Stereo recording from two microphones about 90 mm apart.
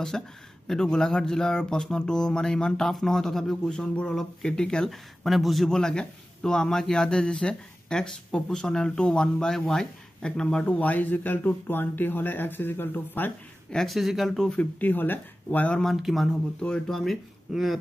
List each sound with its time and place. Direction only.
0.1 s a man's voice: 5° left (ahead or behind)
13.7 s speech: 5° left (ahead or behind)
14.6 s speech: 20° left (ahead or behind)
15.8 s speech: centre (ahead or behind)
16.6 s speech: 10° left (ahead or behind)